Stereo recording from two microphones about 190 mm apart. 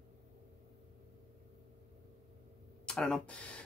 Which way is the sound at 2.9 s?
5° left (ahead or behind).